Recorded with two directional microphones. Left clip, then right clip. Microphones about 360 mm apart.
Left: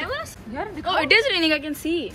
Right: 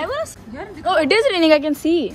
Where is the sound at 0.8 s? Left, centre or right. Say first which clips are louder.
Right 3 dB; right.